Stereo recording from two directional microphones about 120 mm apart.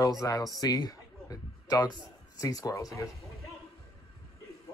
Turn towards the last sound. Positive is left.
turn(degrees=25)  # may be behind; listen again after turning